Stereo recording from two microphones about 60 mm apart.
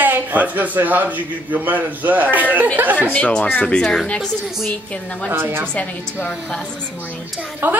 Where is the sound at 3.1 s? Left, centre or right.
Left.